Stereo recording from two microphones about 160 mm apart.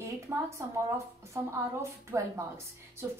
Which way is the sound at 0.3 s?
15° right (ahead or behind).